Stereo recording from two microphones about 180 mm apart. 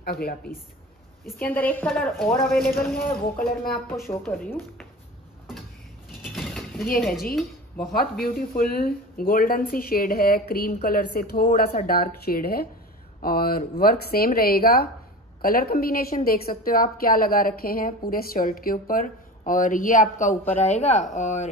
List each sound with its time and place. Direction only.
0.0 s speech: 60° left (ahead or behind)
1.2 s speech: 10° left (ahead or behind)
2.8 s speech: 55° left (ahead or behind)
3.9 s speech: 15° left (ahead or behind)
6.2 s a sound: centre (ahead or behind)
7.0 s speech: centre (ahead or behind)
7.9 s a woman's voice: 55° left (ahead or behind); by 21.5 s 40° left (ahead or behind)